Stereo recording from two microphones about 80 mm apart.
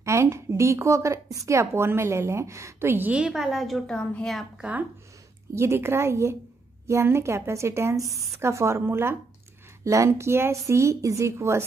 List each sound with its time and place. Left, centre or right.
0.0 s a woman's voice: right
3.1 s a woman's voice: centre
4.6 s speech: centre
5.5 s a woman's voice: right